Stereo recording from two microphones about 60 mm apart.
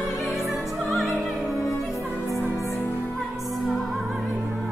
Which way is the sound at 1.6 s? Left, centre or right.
Left.